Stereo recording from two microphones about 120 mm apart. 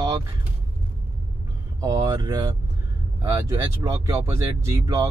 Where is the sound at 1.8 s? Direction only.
25° right (ahead or behind).